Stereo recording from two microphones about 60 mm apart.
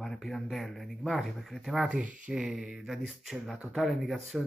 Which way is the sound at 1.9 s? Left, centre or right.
Right.